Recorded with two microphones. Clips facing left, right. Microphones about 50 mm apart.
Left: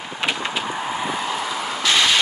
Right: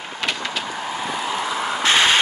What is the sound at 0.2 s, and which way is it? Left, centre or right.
Vehicle, centre.